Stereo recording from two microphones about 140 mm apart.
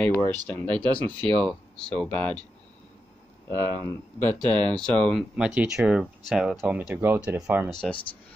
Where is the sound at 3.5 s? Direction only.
30° right (ahead or behind).